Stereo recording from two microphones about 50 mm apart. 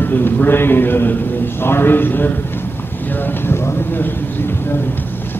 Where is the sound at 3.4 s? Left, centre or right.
Left.